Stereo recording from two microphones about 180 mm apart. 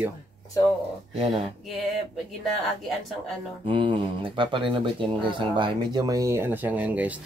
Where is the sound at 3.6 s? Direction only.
25° right (ahead or behind); by 7.2 s 10° right (ahead or behind).